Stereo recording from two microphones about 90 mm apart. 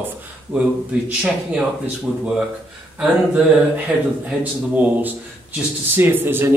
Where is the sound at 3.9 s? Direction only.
15° right (ahead or behind).